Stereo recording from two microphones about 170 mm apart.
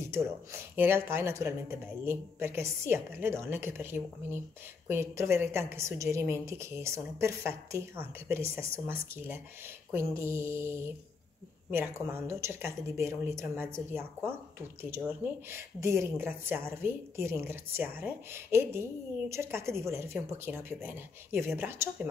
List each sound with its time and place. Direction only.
0.1 s a woman's voice: 15° right (ahead or behind)